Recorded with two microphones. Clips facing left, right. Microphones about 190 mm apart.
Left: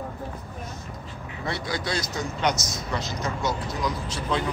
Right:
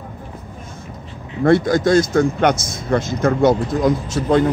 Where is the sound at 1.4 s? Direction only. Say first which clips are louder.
Right 16 dB; 50° right (ahead or behind).